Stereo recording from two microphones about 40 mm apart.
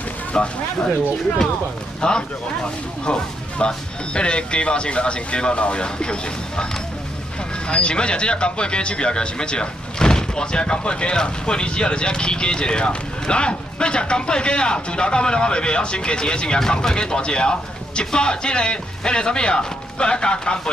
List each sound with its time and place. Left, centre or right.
0.3 s speech: left
2.0 s speech: left